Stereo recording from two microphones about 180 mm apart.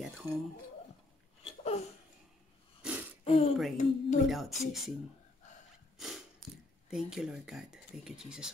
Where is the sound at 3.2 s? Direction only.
35° left (ahead or behind).